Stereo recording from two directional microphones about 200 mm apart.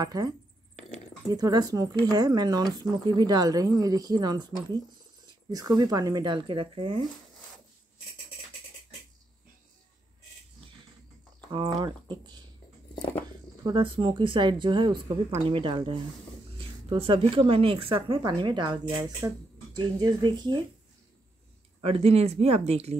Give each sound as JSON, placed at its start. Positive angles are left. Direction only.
{"t": 0.0, "sound": "speech", "side_deg": -20}
{"t": 1.3, "sound": "speech", "side_deg": -20}
{"t": 11.5, "sound": "speech", "side_deg": -20}
{"t": 13.7, "sound": "speech", "side_deg": -25}
{"t": 21.8, "sound": "speech", "side_deg": -30}